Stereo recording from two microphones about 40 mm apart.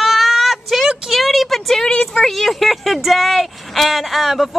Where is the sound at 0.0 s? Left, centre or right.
Centre.